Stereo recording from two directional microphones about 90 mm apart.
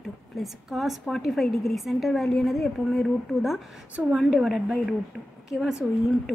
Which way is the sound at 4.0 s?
10° right (ahead or behind).